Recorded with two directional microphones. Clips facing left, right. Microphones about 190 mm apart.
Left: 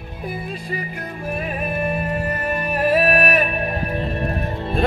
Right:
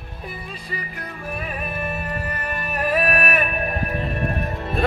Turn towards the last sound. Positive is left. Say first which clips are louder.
# left 2 dB
turn(degrees=25)  # may be behind; listen again after turning